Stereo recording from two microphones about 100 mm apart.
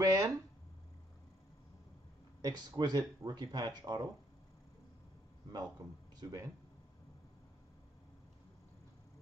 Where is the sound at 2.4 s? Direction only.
45° right (ahead or behind).